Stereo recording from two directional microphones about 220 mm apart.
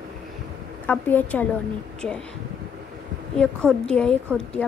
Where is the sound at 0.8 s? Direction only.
10° left (ahead or behind).